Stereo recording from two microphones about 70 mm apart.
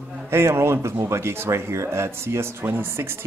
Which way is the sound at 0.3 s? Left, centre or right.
Right.